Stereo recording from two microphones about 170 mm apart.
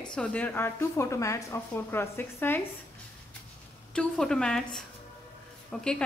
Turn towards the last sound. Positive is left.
turn(degrees=5)  # may be behind; listen again after turning